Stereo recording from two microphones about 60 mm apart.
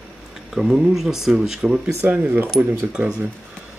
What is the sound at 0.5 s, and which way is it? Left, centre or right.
Speech, centre.